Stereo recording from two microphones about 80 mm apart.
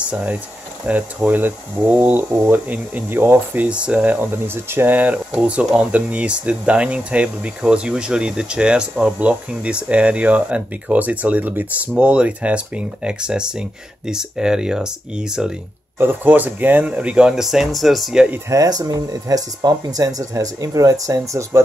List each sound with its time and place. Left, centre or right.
0.0 s speech: centre
16.0 s speech: right; by 18.2 s centre
18.5 s speech: right